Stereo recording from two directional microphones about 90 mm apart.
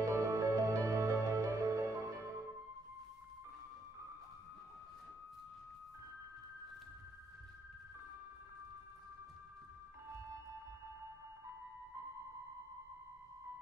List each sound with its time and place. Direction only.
0.0 s music: 35° right (ahead or behind)